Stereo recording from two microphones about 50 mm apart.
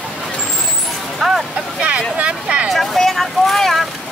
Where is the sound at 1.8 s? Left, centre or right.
Right.